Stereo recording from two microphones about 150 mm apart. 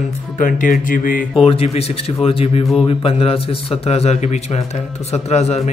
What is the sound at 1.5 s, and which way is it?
A man's voice, 40° left (ahead or behind).